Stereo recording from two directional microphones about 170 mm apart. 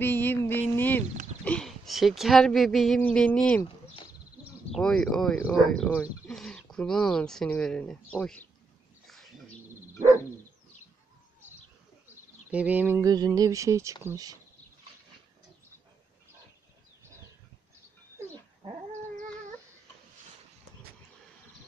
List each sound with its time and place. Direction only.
0.0 s music: 10° left (ahead or behind)
1.4 s speech: 5° left (ahead or behind)
4.7 s speech: 5° left (ahead or behind)
9.0 s bird: centre (ahead or behind)
12.4 s speech: 10° right (ahead or behind)